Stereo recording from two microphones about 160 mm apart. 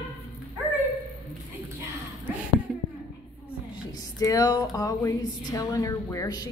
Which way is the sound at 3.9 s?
20° left (ahead or behind).